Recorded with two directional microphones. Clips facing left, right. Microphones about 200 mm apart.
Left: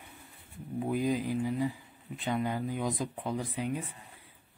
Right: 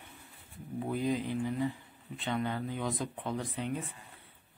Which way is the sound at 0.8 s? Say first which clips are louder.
Left 2 dB; 10° left (ahead or behind).